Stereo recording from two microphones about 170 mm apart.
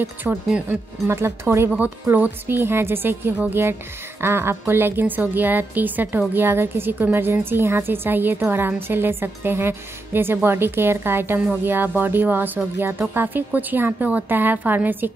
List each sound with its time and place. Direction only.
0.0 s a woman's voice: 10° right (ahead or behind)